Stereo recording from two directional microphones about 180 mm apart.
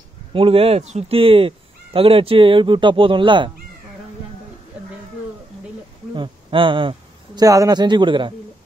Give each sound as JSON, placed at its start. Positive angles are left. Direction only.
{"t": 0.3, "sound": "speech", "side_deg": -30}
{"t": 6.1, "sound": "a man's voice", "side_deg": -25}